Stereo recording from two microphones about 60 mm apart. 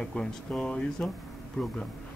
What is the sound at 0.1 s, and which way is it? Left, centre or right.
Speech, centre.